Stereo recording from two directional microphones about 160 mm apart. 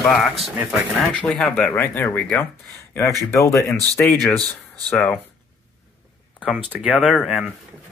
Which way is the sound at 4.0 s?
5° left (ahead or behind).